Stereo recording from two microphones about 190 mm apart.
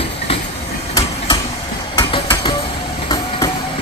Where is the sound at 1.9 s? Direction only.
25° left (ahead or behind).